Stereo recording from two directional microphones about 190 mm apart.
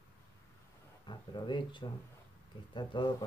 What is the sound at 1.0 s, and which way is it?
Speech, 25° left (ahead or behind).